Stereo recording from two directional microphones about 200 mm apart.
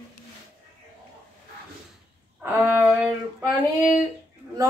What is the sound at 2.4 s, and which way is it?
Speech, 10° right (ahead or behind).